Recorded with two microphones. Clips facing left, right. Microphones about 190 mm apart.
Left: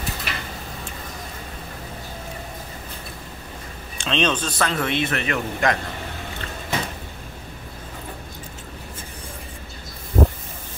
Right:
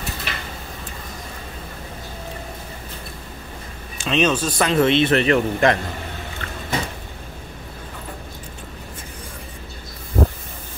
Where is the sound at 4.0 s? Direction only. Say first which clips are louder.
Right 3 dB; 5° right (ahead or behind); by 5.7 s 30° right (ahead or behind).